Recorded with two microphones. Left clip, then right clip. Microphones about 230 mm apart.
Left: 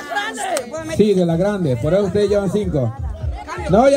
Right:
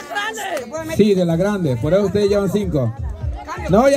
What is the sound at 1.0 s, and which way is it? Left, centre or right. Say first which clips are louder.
A man's voice: even; right.